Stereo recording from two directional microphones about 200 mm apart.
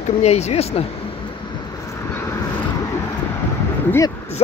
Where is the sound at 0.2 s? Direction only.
30° left (ahead or behind).